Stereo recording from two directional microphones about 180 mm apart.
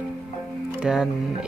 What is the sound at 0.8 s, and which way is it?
Speech, 5° right (ahead or behind).